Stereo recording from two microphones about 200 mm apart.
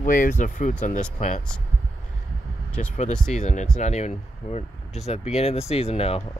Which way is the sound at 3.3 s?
35° left (ahead or behind).